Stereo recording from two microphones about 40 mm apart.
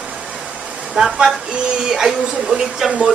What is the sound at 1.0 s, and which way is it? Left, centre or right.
A woman's voice, centre.